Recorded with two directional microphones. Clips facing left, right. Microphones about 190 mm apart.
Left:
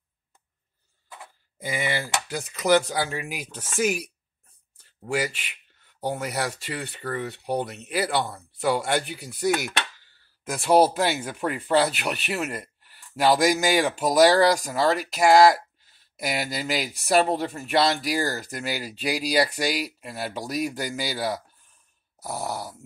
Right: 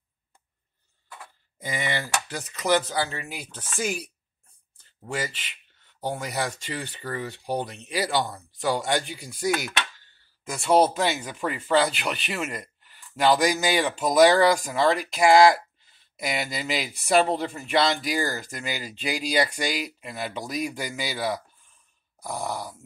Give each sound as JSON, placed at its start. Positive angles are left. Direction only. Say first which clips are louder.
{"t": 1.6, "sound": "speech", "louder": "left 2 dB", "side_deg": 10}